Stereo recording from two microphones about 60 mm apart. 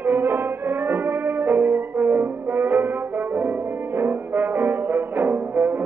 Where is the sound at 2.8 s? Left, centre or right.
Right.